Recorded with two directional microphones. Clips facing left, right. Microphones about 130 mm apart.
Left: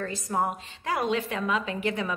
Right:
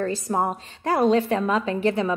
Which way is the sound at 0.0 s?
30° right (ahead or behind).